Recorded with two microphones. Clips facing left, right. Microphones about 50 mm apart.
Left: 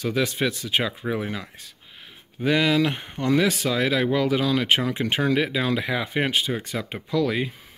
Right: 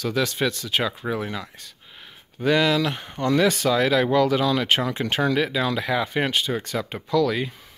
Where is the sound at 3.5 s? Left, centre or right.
Centre.